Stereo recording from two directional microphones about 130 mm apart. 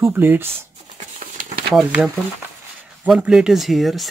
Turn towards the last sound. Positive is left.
turn(degrees=0)  # may be behind; listen again after turning